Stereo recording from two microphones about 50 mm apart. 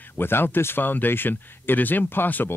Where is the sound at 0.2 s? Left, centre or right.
Left.